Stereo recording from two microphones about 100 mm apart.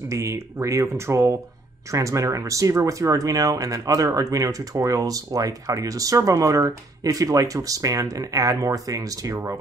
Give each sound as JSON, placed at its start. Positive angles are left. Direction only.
{"t": 0.1, "sound": "speech", "side_deg": -30}